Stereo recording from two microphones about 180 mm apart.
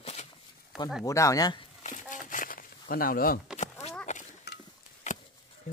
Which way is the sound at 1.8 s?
45° left (ahead or behind).